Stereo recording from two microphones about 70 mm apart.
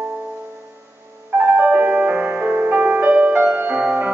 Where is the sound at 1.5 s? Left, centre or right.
Right.